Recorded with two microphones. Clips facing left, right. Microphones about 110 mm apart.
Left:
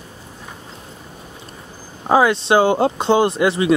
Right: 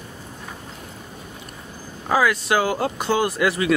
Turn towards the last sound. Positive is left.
turn(degrees=25)  # may be behind; listen again after turning